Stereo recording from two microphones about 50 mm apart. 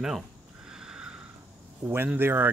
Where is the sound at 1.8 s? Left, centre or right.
Right.